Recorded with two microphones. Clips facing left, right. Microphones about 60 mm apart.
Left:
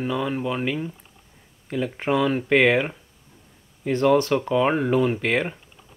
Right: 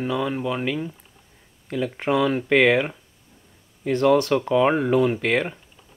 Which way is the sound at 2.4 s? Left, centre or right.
Centre.